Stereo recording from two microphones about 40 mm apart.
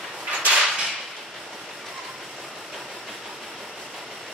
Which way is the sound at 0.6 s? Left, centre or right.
Centre.